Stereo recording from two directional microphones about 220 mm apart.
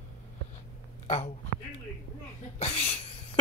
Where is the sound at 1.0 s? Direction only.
30° left (ahead or behind).